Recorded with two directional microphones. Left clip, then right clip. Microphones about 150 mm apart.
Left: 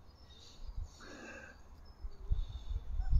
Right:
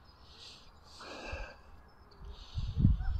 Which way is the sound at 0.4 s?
25° left (ahead or behind).